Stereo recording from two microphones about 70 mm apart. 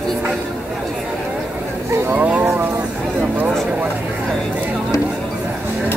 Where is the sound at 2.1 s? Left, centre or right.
Right.